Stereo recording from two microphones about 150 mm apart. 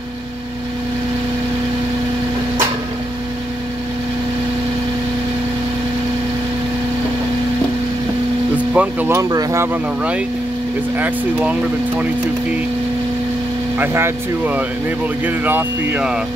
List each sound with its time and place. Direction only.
8.7 s speech: 15° right (ahead or behind)
11.0 s speech: 10° right (ahead or behind)
13.7 s speech: 15° right (ahead or behind)